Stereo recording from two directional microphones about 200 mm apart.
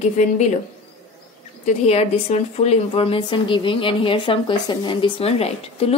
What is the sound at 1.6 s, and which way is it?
A woman's voice, 30° left (ahead or behind).